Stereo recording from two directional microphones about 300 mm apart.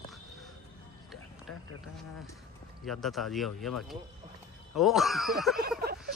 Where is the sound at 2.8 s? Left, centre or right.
Centre.